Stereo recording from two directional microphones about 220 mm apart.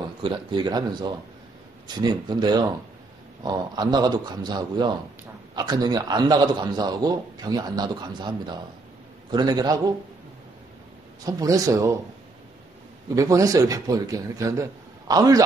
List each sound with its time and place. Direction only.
0.2 s a man's voice: 20° right (ahead or behind)
11.2 s a man's voice: 15° right (ahead or behind)
13.1 s a man's voice: 15° right (ahead or behind)